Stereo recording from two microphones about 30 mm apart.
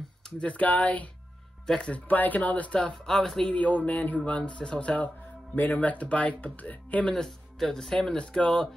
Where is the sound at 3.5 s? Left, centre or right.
Left.